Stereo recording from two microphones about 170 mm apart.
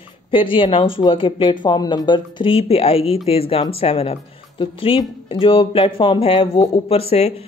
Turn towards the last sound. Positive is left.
turn(degrees=35)  # may be behind; listen again after turning